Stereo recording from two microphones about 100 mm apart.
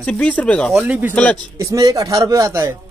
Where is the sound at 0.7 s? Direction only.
10° right (ahead or behind).